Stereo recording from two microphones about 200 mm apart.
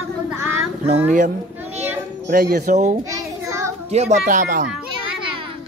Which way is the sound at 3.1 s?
15° right (ahead or behind).